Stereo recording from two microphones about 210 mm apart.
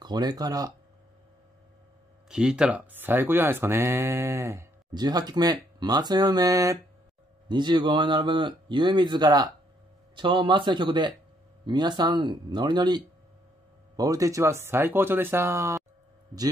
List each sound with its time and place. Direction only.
0.0 s speech: 20° right (ahead or behind)
2.2 s speech: 5° right (ahead or behind)